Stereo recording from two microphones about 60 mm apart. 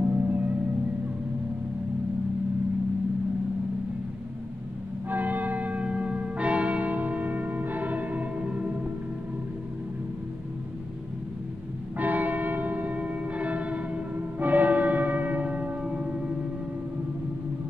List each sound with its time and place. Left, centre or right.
0.0 s music: right
5.1 s church bell: right
12.0 s church bell: right